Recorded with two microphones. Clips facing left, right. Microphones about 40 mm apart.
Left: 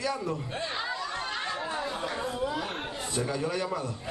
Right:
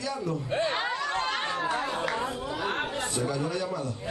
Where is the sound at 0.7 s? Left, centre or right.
Right.